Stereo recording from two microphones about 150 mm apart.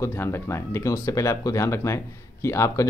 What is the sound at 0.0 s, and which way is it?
Speech, 15° left (ahead or behind).